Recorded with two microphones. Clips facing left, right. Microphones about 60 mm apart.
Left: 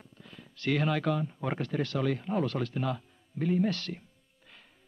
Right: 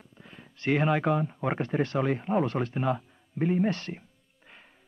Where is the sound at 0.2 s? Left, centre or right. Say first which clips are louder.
Right 1 dB; right.